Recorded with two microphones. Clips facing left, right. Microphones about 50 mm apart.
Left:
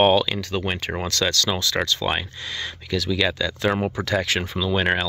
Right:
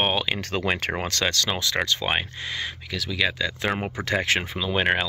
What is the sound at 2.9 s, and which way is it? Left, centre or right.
Speech, centre.